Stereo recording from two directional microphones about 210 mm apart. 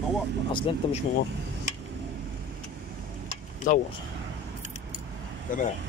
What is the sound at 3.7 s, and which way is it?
Speech, 40° left (ahead or behind).